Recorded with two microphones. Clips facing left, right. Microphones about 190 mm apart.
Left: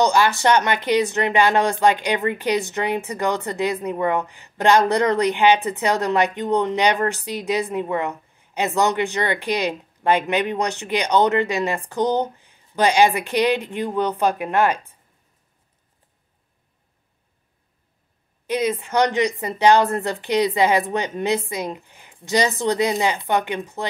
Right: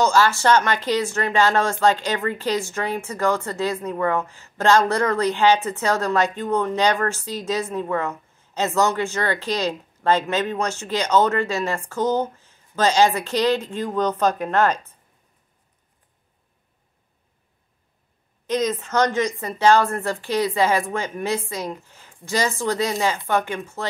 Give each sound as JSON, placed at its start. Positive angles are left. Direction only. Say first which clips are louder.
{"t": 0.0, "sound": "speech", "louder": "left 1 dB", "side_deg": 15}
{"t": 18.5, "sound": "speech", "louder": "left 1 dB", "side_deg": 10}